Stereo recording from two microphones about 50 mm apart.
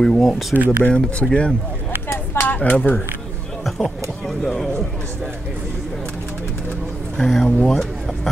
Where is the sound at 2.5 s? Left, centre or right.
Left.